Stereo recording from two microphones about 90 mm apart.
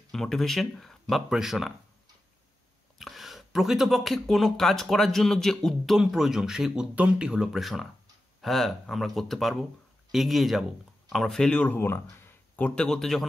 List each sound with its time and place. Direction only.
0.1 s speech: 5° left (ahead or behind)
3.0 s speech: centre (ahead or behind)
11.7 s speech: 25° left (ahead or behind)
12.8 s speech: 5° left (ahead or behind)